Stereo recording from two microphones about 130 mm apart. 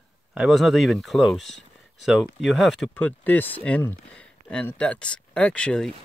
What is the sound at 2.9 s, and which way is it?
Speech, 15° left (ahead or behind).